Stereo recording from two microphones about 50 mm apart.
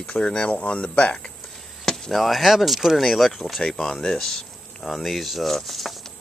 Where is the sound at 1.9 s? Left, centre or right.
Centre.